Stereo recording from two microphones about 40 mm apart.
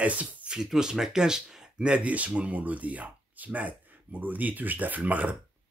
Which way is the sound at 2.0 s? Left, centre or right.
Right.